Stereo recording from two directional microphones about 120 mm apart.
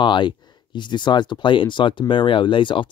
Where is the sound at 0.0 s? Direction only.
40° left (ahead or behind).